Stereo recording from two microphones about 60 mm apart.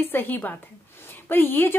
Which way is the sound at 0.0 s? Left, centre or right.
Left.